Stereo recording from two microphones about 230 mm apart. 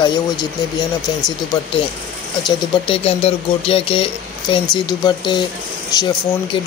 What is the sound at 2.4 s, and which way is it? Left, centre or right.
Speech, left.